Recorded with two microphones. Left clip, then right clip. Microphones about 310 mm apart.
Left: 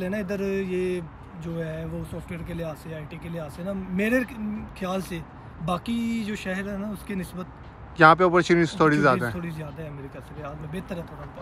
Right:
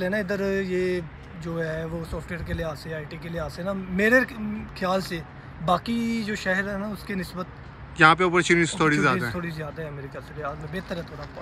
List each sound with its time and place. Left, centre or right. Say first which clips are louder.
0.0 s speech: right 3 dB; centre
5.9 s speech: right 1 dB; left
6.2 s speech: right 6 dB; centre